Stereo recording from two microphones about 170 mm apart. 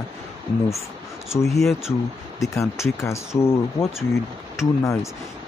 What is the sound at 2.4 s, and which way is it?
Speech, 15° left (ahead or behind).